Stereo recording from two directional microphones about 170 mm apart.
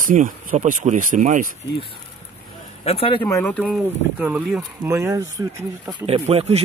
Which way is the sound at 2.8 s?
35° left (ahead or behind).